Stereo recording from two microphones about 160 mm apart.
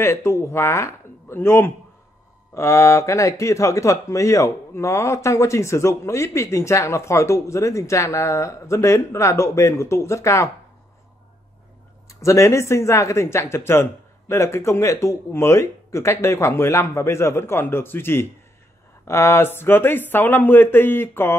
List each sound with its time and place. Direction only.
0.0 s speech: 15° left (ahead or behind)
12.1 s speech: 20° left (ahead or behind)